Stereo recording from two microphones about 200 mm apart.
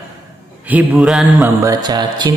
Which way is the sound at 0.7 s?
5° right (ahead or behind).